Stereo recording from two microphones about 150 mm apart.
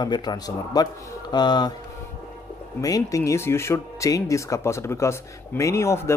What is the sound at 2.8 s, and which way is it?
Speech, 20° left (ahead or behind).